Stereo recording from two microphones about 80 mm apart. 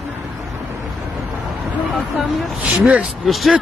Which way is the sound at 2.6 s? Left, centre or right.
Centre.